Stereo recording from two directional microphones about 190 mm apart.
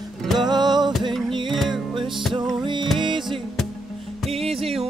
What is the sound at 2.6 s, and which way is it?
Music, 25° right (ahead or behind).